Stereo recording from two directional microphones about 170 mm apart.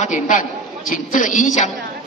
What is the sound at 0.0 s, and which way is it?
A man's voice, 45° left (ahead or behind).